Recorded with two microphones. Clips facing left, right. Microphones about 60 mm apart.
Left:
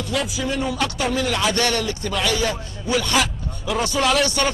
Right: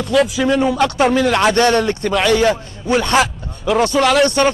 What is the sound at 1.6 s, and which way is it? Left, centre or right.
Speech, right.